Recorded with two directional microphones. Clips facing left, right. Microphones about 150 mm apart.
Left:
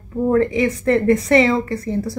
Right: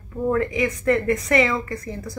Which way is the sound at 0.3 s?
30° left (ahead or behind).